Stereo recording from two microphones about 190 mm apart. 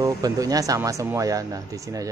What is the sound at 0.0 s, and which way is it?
Speech, 20° right (ahead or behind).